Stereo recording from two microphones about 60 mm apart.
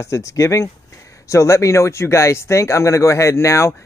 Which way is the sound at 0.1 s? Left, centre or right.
Left.